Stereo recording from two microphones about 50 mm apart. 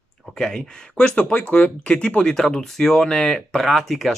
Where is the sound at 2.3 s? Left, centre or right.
Centre.